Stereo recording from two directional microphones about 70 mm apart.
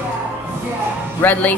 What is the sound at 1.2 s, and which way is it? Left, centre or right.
Speech, left.